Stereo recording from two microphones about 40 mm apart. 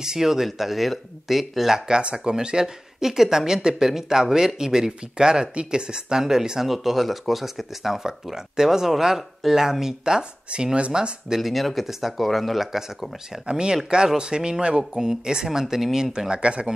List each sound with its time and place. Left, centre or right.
0.0 s speech: centre
1.9 s speech: right
11.3 s speech: centre
13.5 s speech: centre
16.3 s speech: right